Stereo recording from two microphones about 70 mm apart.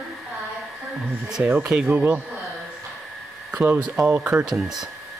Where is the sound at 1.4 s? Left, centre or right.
Right.